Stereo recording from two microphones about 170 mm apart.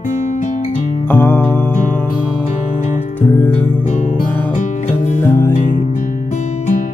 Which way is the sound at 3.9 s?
45° left (ahead or behind).